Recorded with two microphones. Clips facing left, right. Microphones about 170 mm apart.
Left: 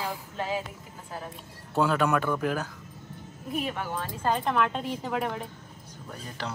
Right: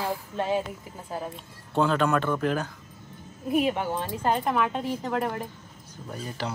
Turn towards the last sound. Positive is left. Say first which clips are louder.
# right 4 dB
turn(degrees=-5)  # may be behind; listen again after turning